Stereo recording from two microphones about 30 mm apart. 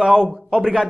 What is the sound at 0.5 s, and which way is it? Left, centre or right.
Speech, right.